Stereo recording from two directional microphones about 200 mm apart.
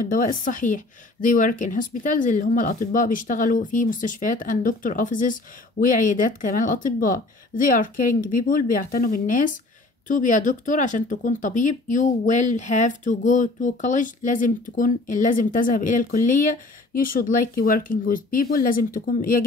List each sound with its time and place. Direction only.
0.0 s speech: 45° left (ahead or behind)